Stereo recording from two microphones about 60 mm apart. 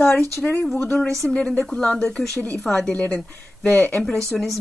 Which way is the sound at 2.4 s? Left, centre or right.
Left.